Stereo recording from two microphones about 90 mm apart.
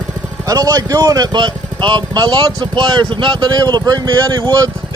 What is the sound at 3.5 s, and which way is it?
Speech, 45° right (ahead or behind).